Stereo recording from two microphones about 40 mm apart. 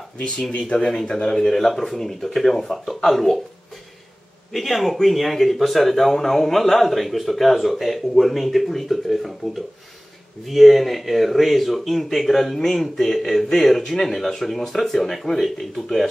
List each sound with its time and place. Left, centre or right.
0.5 s speech: left
0.7 s speech: left
4.5 s speech: centre
10.4 s speech: centre